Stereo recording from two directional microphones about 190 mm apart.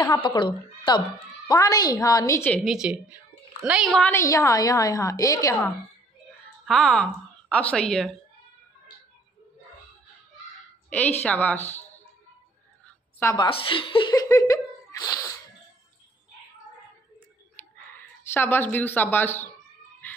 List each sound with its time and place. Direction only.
0.0 s a woman's voice: 20° left (ahead or behind)
6.6 s speech: 5° left (ahead or behind)
11.2 s a woman's voice: 10° left (ahead or behind)
13.2 s a woman's voice: 15° left (ahead or behind)
13.5 s speech: 25° left (ahead or behind)
17.9 s speech: 10° left (ahead or behind)